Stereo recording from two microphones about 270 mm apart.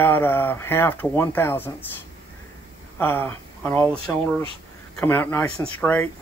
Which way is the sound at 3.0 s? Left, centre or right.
Centre.